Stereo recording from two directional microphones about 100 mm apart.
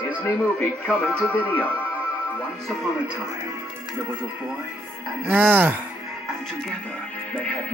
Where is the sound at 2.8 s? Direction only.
10° right (ahead or behind).